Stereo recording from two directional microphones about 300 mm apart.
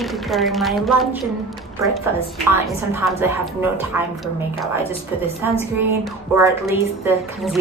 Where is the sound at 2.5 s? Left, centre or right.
Centre.